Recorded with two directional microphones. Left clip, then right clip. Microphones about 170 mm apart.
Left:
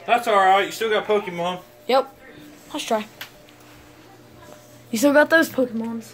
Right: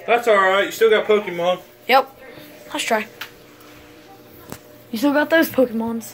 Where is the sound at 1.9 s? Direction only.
25° left (ahead or behind).